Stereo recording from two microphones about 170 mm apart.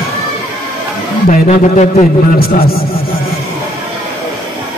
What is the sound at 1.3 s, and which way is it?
Speech, 45° left (ahead or behind).